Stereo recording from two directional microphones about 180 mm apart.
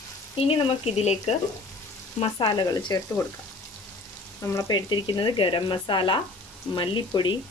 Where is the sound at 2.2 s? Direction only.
25° left (ahead or behind).